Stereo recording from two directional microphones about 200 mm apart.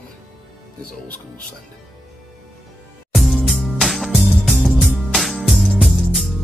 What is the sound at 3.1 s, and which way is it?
Music, centre (ahead or behind).